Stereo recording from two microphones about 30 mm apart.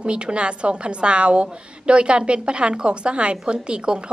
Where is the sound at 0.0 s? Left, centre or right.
Right.